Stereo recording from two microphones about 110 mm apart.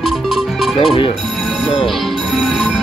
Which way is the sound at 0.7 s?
60° left (ahead or behind).